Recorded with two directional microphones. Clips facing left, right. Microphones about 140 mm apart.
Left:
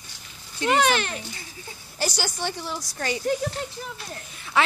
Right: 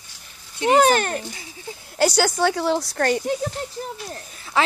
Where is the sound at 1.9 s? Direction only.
75° right (ahead or behind); by 3.2 s 60° right (ahead or behind).